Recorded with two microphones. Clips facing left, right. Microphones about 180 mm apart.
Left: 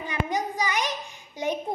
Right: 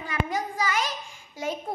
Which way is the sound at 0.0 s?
20° left (ahead or behind).